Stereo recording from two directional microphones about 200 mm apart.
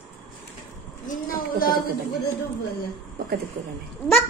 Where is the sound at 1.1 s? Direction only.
45° left (ahead or behind).